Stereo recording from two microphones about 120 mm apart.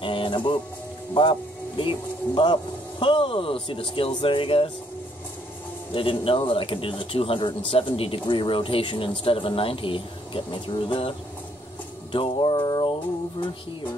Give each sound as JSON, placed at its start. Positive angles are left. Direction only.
{"t": 0.0, "sound": "music", "side_deg": 45}
{"t": 1.2, "sound": "speech", "side_deg": 40}
{"t": 5.9, "sound": "speech", "side_deg": 50}
{"t": 12.1, "sound": "a sound", "side_deg": 45}